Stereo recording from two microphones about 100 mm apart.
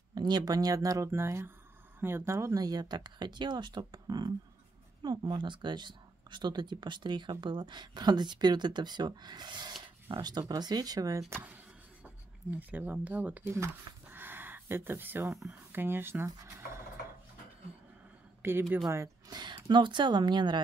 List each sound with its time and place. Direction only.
0.1 s speech: 50° right (ahead or behind)
11.3 s a sound: 15° right (ahead or behind)
12.5 s speech: 15° right (ahead or behind)
14.1 s a sound: 20° right (ahead or behind)
15.3 s speech: 5° right (ahead or behind)
15.7 s speech: 20° right (ahead or behind)
18.4 s speech: 25° right (ahead or behind)
19.3 s speech: 45° right (ahead or behind)